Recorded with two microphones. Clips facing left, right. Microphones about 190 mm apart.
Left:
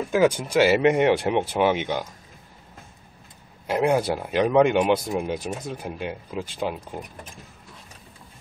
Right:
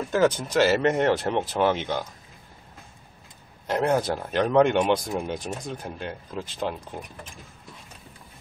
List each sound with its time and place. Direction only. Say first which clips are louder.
0.1 s speech: left 2 dB; 10° left (ahead or behind)
3.6 s speech: left 2 dB; 10° left (ahead or behind)